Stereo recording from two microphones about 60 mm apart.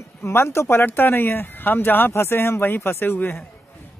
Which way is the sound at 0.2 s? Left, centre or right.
Left.